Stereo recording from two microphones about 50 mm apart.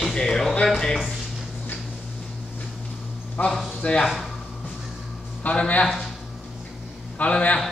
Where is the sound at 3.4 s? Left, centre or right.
Left.